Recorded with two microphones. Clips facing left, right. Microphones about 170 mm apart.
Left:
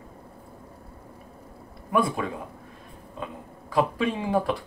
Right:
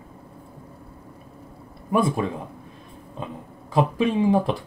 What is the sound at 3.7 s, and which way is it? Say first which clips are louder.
Speech: right 4 dB; 20° right (ahead or behind).